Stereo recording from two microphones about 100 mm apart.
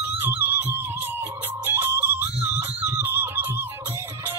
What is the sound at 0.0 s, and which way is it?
Music, 20° right (ahead or behind).